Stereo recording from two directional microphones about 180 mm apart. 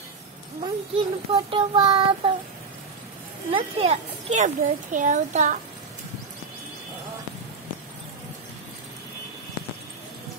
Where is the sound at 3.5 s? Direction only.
35° right (ahead or behind).